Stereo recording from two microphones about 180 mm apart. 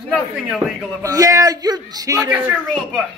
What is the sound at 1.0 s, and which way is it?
A man's voice, 20° right (ahead or behind).